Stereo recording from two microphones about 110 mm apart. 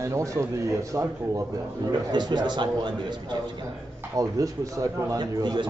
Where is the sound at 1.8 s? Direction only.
40° right (ahead or behind).